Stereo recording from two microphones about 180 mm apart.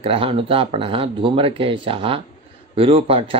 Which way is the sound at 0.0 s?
30° right (ahead or behind).